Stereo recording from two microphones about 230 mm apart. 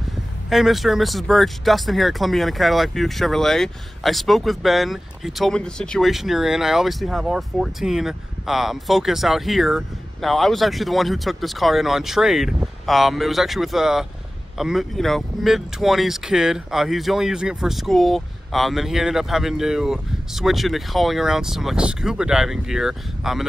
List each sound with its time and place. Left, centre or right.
0.5 s speech: centre